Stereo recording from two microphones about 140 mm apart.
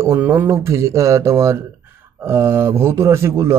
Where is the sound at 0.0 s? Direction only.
20° right (ahead or behind).